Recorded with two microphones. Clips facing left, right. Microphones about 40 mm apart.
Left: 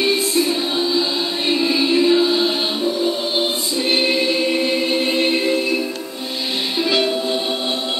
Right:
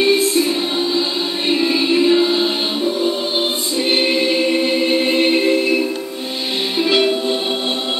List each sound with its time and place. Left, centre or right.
0.0 s music: centre
3.9 s choir: centre
6.8 s music: centre